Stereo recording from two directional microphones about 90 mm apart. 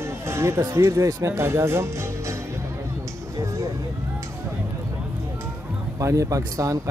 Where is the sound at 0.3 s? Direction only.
30° right (ahead or behind).